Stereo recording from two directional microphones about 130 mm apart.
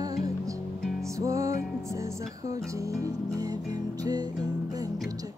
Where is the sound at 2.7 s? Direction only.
25° right (ahead or behind).